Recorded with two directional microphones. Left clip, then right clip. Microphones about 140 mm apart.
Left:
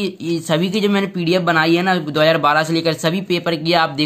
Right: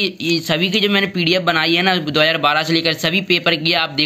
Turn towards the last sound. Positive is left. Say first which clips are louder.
# left 1 dB
turn(degrees=-5)  # may be behind; listen again after turning